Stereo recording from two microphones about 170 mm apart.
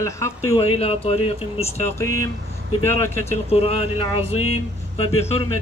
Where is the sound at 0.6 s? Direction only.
35° left (ahead or behind).